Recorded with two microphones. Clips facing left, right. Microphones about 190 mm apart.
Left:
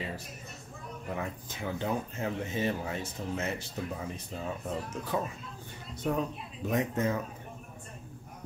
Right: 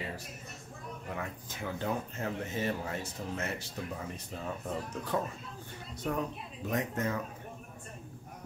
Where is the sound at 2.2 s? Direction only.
15° left (ahead or behind).